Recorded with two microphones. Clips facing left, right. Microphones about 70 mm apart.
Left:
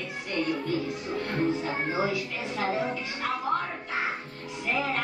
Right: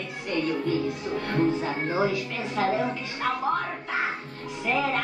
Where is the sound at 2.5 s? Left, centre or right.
Right.